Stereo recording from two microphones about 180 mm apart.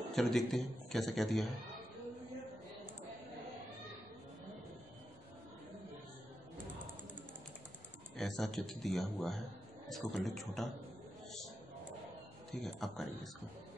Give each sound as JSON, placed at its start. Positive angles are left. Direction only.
{"t": 0.1, "sound": "a man's voice", "side_deg": 0}
{"t": 8.2, "sound": "a man's voice", "side_deg": 0}
{"t": 12.4, "sound": "a man's voice", "side_deg": 0}